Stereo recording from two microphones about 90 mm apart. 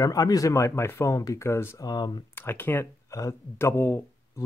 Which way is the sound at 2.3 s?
25° left (ahead or behind).